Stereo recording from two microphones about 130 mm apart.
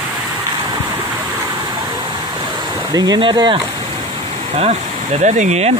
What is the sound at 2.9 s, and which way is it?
Speech, 30° right (ahead or behind).